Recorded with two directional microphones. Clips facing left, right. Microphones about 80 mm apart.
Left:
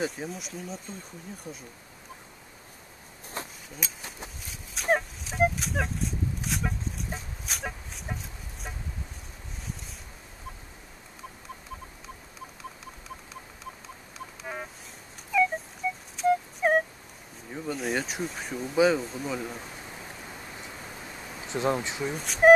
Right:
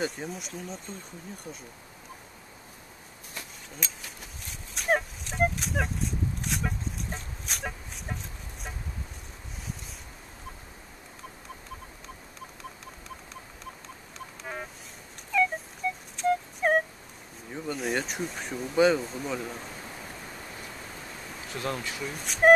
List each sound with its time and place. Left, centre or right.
0.0 s speech: centre
3.4 s a sound: left
3.8 s speech: centre
4.5 s dog: centre
13.8 s insect: centre
15.3 s a sound: centre
16.2 s music: centre
17.5 s speech: centre
21.5 s speech: left
22.1 s speech: centre